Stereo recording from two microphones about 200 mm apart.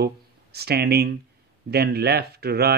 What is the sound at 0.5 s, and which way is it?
A man's voice, 55° right (ahead or behind).